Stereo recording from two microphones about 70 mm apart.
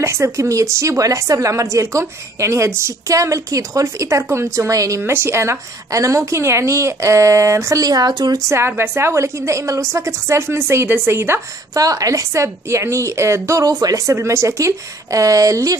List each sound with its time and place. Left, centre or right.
0.0 s a woman's voice: right
5.1 s a woman's voice: right
8.5 s a woman's voice: right
11.7 s a woman's voice: right
13.7 s speech: right
14.0 s a woman's voice: right